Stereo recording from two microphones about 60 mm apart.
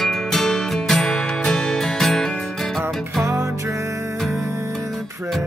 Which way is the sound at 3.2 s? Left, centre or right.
Right.